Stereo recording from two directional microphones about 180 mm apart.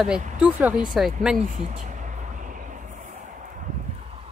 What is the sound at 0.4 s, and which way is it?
Speech, 10° right (ahead or behind).